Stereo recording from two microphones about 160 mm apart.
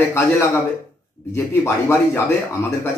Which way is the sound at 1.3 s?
15° left (ahead or behind).